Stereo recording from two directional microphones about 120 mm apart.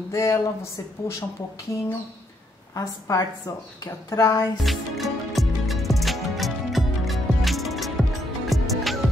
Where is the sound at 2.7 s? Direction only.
25° left (ahead or behind).